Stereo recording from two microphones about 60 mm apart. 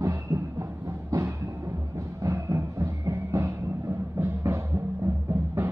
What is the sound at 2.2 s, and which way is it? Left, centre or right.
Music, right.